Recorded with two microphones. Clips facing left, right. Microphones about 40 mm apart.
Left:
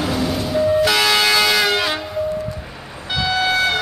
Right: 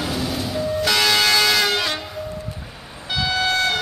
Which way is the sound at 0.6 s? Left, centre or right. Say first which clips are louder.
Left 5 dB; centre.